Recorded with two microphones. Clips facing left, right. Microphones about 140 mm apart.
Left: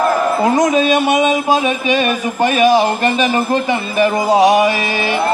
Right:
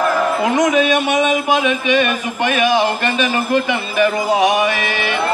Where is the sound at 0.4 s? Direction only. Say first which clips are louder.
Left 2 dB; 35° left (ahead or behind).